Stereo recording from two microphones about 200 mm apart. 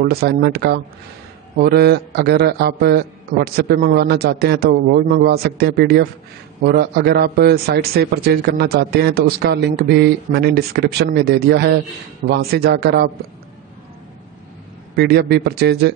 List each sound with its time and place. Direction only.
0.0 s a man's voice: 50° right (ahead or behind)
15.0 s speech: 55° right (ahead or behind)